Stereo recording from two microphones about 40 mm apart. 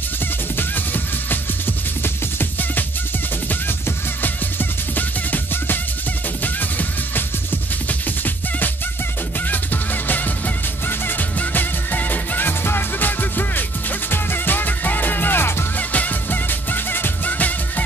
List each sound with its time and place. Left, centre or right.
0.6 s music: left
4.2 s music: left
15.9 s music: left